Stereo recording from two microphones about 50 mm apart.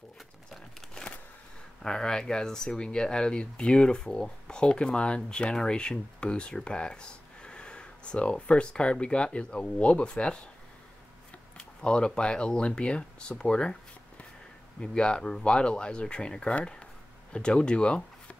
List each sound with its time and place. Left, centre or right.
0.7 s a sound: centre
1.8 s speech: centre
11.5 s speech: centre